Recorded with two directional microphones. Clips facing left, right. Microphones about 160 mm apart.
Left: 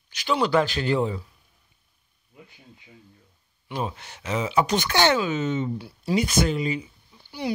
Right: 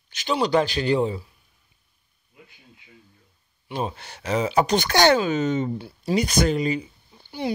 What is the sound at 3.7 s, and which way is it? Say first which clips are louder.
Speech: right 2 dB; 30° right (ahead or behind).